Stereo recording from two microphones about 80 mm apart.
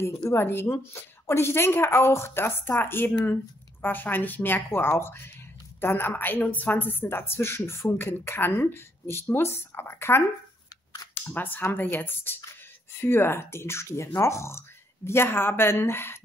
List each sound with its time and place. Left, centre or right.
0.3 s a woman's voice: left
11.2 s a woman's voice: left